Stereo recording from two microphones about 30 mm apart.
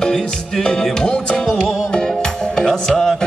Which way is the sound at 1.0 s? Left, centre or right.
Left.